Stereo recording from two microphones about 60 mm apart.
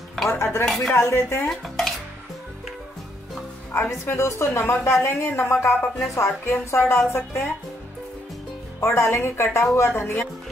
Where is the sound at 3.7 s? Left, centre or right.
Left.